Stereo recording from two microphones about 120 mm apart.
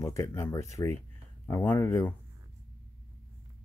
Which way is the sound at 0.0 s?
25° left (ahead or behind).